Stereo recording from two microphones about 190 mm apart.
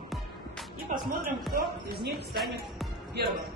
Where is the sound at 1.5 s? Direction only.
55° right (ahead or behind).